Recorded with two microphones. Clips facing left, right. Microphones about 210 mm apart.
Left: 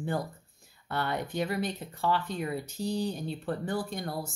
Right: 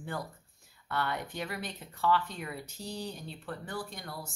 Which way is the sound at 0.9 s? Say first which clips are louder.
Left 3 dB; 30° left (ahead or behind).